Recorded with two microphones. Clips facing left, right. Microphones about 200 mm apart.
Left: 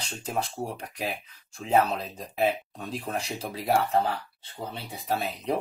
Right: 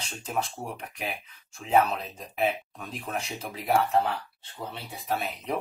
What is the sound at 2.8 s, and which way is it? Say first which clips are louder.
Speech: left 2 dB; 30° left (ahead or behind).